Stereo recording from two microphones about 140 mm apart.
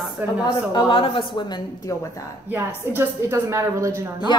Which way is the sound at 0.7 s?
40° left (ahead or behind).